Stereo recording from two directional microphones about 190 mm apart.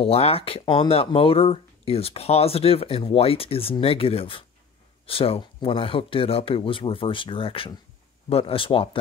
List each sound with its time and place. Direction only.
0.0 s speech: 30° left (ahead or behind)